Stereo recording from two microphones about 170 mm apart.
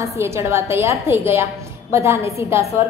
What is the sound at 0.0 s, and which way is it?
A woman's voice, 15° right (ahead or behind).